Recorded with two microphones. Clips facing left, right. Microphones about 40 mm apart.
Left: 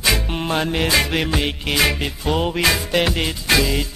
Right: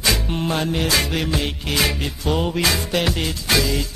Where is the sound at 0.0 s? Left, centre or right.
Centre.